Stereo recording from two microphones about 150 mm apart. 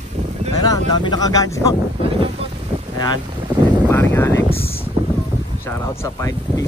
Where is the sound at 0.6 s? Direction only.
30° left (ahead or behind).